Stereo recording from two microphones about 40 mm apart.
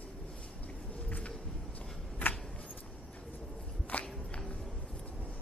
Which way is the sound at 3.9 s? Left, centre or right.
Left.